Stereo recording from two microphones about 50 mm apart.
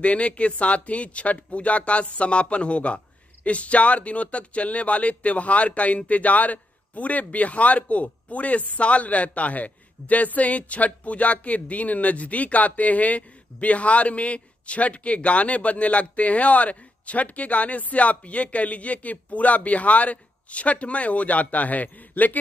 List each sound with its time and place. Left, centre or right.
0.0 s speech: left